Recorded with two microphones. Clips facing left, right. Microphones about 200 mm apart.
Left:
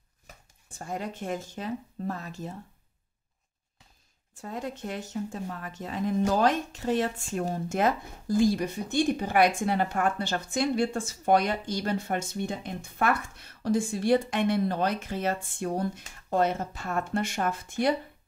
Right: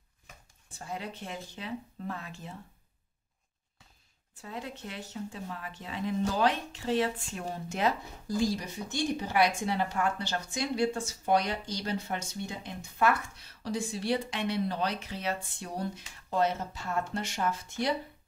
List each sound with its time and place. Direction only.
0.7 s speech: 50° left (ahead or behind)
4.4 s speech: 45° left (ahead or behind)